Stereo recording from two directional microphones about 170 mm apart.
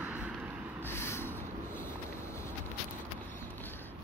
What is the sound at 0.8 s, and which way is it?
Snort, 15° left (ahead or behind).